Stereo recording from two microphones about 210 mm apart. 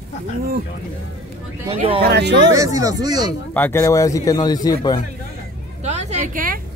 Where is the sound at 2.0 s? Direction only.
55° right (ahead or behind).